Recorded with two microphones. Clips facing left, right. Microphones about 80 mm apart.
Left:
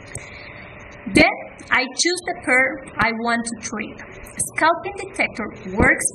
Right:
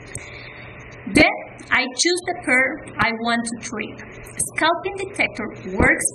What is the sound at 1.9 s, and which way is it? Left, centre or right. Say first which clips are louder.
A woman's voice: right 2 dB; centre.